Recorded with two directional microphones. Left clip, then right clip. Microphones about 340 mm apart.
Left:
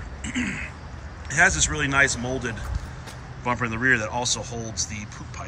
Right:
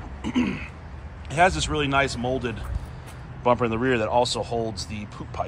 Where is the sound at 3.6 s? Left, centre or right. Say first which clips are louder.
Left 1 dB; centre.